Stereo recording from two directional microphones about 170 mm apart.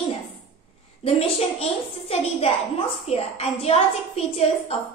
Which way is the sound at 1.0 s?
35° left (ahead or behind).